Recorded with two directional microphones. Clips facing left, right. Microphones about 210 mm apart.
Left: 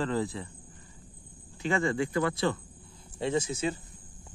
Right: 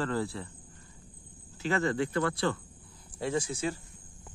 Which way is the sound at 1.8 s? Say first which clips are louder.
Left 1 dB; 10° left (ahead or behind).